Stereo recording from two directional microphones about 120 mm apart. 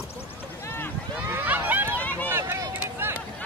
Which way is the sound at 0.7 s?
20° left (ahead or behind).